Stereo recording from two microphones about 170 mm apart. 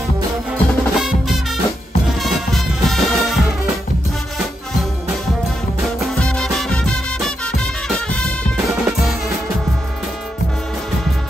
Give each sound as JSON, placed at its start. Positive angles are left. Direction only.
{"t": 0.5, "sound": "music", "side_deg": 0}
{"t": 5.9, "sound": "music", "side_deg": 5}
{"t": 8.5, "sound": "music", "side_deg": -5}